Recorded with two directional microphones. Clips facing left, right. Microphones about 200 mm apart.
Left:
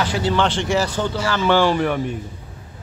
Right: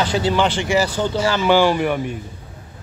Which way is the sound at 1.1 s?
15° right (ahead or behind).